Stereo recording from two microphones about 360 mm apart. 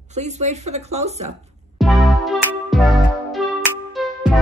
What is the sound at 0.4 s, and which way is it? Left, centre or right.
Speech, centre.